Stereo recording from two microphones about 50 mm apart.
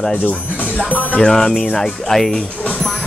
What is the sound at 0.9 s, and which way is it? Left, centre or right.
Music, left.